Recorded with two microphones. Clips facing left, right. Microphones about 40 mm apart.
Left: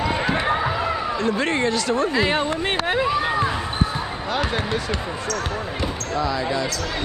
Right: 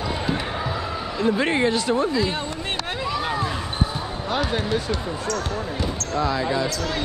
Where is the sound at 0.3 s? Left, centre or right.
Left.